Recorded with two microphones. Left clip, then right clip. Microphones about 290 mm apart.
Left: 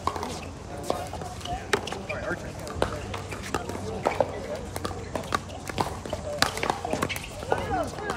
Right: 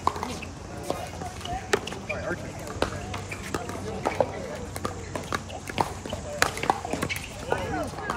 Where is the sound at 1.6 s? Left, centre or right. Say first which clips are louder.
Even; centre.